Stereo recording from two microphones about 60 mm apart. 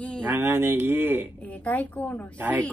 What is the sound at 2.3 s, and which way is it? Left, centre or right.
Speech, right.